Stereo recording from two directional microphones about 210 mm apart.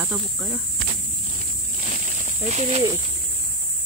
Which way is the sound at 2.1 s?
35° right (ahead or behind).